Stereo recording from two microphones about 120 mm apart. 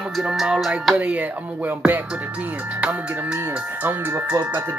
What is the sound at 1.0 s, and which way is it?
Speech, 15° right (ahead or behind).